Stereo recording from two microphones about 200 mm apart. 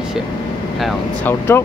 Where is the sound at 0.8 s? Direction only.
Centre (ahead or behind).